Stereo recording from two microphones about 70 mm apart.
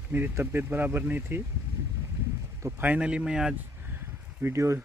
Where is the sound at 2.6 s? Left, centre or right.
Right.